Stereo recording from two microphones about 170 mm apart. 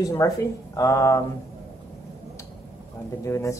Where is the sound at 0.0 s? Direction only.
15° left (ahead or behind).